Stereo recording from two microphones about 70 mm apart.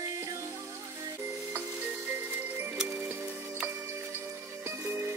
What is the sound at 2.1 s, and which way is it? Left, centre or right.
Music, right.